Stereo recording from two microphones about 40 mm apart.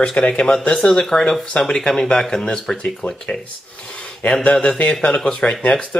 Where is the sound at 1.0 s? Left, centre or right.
Centre.